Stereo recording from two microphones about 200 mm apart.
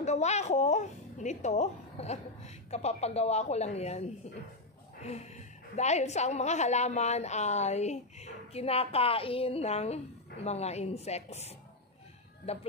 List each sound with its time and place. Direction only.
0.0 s a woman's voice: 35° left (ahead or behind)
5.8 s a woman's voice: 35° left (ahead or behind)